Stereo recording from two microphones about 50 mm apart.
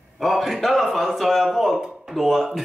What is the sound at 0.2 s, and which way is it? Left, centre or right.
Speech, centre.